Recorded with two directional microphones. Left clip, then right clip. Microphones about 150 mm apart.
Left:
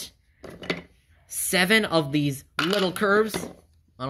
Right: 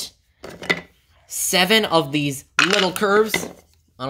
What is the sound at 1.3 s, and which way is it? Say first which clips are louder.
Speech: right 4 dB; 5° right (ahead or behind).